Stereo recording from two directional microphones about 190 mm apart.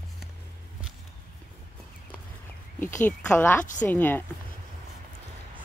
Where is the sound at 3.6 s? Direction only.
40° left (ahead or behind).